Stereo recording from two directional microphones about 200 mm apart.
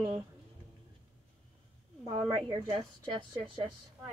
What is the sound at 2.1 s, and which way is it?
Speech, 25° right (ahead or behind).